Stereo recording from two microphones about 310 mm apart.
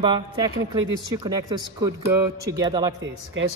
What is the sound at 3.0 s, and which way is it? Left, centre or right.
Speech, right.